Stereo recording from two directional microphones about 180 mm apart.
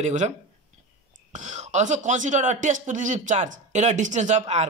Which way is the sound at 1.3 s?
40° right (ahead or behind).